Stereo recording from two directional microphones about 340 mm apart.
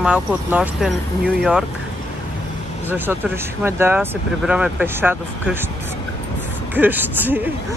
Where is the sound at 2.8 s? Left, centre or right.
Centre.